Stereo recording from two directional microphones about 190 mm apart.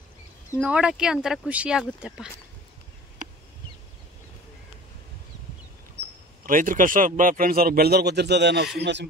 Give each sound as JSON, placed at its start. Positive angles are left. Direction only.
{"t": 0.6, "sound": "speech", "side_deg": -5}
{"t": 6.4, "sound": "a man's voice", "side_deg": -45}
{"t": 8.7, "sound": "music", "side_deg": -65}